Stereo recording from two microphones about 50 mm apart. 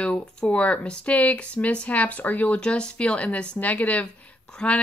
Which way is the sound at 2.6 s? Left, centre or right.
Left.